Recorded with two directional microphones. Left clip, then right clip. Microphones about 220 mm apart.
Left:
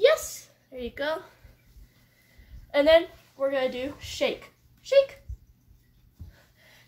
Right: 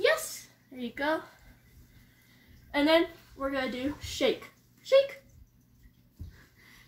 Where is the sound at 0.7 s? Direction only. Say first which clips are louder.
Left 1 dB; 45° left (ahead or behind).